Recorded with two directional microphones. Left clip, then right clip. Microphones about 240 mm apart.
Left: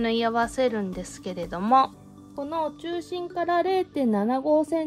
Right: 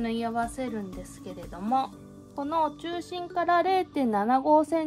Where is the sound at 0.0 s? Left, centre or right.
Left.